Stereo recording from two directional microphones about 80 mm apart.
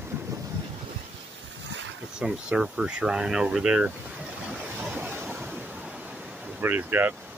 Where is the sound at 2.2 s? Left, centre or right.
Centre.